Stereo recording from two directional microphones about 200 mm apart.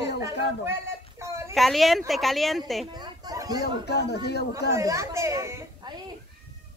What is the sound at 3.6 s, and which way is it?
Speech, 55° left (ahead or behind).